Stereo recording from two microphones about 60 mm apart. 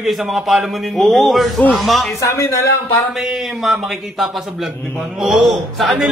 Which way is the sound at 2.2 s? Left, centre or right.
Left.